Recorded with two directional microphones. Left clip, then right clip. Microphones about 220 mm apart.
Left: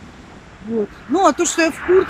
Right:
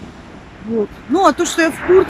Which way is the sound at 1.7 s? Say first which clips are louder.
Right 4 dB; 25° right (ahead or behind).